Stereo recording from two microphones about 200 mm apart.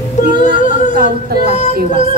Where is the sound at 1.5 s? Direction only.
35° left (ahead or behind).